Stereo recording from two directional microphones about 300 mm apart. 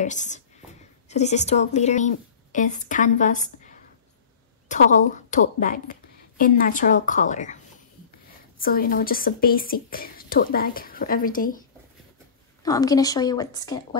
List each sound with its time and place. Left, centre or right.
0.0 s a woman's voice: left
12.6 s a woman's voice: centre